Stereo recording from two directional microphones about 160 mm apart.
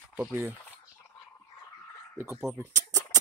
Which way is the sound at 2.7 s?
20° right (ahead or behind).